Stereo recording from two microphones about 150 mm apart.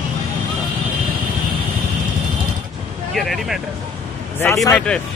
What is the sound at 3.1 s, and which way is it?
Speech, centre (ahead or behind).